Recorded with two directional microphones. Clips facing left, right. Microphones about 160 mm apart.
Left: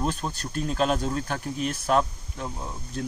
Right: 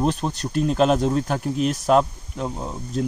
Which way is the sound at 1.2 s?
40° right (ahead or behind).